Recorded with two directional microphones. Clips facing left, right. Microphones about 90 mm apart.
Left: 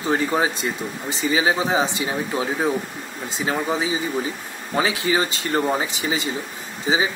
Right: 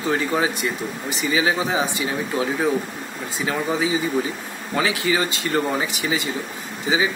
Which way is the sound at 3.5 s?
25° left (ahead or behind).